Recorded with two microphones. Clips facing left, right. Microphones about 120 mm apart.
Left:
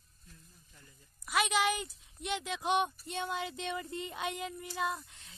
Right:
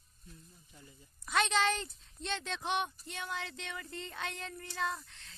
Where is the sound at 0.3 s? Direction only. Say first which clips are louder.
Right 4 dB; 10° right (ahead or behind).